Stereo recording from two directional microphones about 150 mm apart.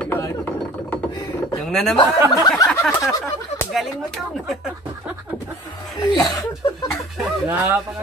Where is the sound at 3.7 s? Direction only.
Centre (ahead or behind).